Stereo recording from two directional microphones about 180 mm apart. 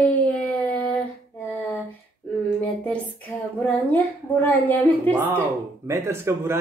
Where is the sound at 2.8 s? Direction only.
5° left (ahead or behind).